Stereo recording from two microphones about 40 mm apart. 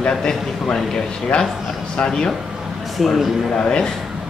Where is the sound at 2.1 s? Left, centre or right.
Centre.